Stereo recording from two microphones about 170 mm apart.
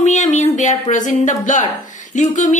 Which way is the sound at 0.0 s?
45° left (ahead or behind).